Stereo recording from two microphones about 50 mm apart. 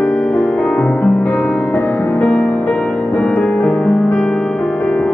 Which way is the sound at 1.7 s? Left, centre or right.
Left.